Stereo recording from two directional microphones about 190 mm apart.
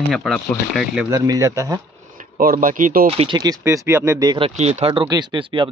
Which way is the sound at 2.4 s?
45° right (ahead or behind).